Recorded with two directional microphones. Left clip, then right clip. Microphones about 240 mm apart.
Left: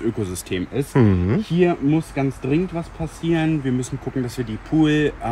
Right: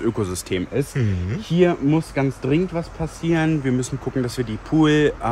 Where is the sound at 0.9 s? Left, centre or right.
Centre.